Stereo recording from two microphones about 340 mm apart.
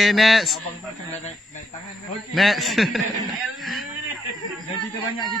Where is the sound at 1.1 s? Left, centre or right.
Centre.